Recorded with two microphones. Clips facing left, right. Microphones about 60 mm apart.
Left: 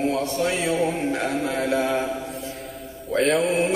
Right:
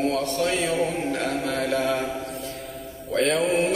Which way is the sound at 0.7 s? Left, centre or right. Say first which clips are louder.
Left 2 dB; centre.